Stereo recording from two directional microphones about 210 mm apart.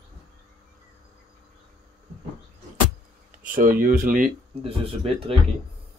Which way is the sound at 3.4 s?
40° right (ahead or behind).